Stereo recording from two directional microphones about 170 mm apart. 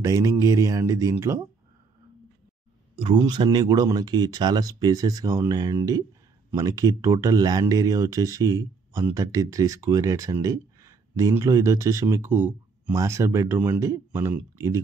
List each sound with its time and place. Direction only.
0.0 s speech: 20° right (ahead or behind)
3.0 s speech: 25° right (ahead or behind)